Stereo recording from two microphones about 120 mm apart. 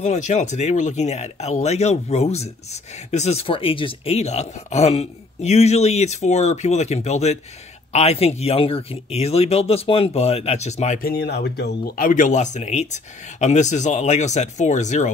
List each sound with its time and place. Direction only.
0.0 s speech: 80° left
12.2 s speech: 90° left